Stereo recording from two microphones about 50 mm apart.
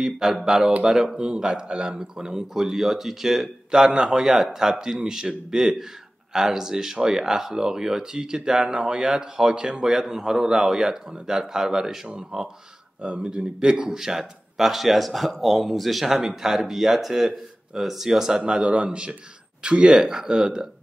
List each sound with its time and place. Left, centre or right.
0.0 s a man's voice: centre
18.4 s speech: centre